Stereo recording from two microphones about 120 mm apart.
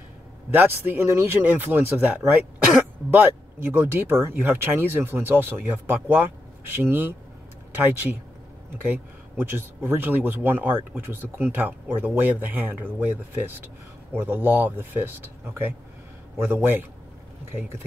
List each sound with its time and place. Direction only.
0.5 s speech: 20° right (ahead or behind)